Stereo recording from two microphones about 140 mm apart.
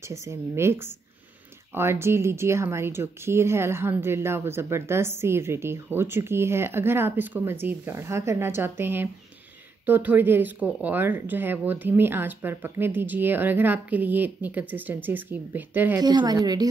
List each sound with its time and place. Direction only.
0.0 s speech: 20° right (ahead or behind)
16.0 s speech: 30° right (ahead or behind)